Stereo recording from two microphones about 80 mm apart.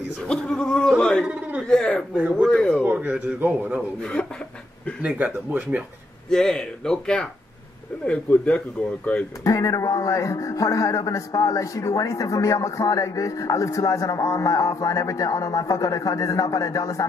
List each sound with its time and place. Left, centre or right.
0.3 s speech: centre
1.2 s a sound: centre
1.7 s speech: centre
2.8 s speech: right
4.0 s speech: centre
5.0 s speech: right
6.3 s speech: centre
9.4 s a man's voice: left